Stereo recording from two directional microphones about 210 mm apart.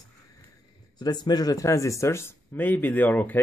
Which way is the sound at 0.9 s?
20° left (ahead or behind).